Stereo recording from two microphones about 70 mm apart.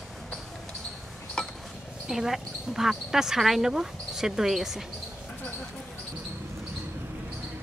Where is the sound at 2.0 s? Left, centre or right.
Centre.